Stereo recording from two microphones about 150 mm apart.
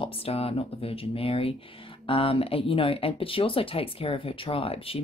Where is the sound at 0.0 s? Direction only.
40° left (ahead or behind).